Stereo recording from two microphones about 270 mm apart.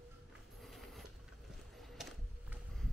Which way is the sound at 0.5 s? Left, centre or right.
Centre.